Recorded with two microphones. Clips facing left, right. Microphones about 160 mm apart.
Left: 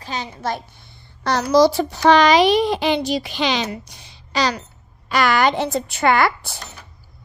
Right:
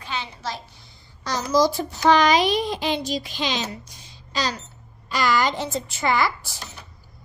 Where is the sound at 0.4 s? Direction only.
55° left (ahead or behind).